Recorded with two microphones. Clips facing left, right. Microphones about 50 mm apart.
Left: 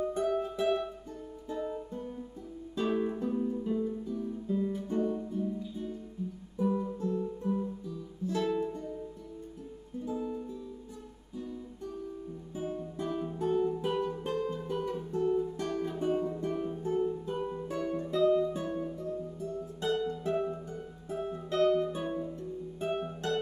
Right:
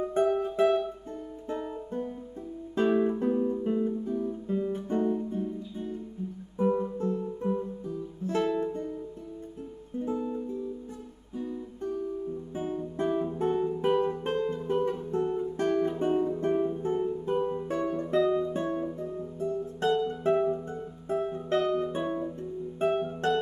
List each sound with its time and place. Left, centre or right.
0.1 s music: right
0.4 s music: right
3.3 s guitar: right
5.3 s music: right
12.9 s music: right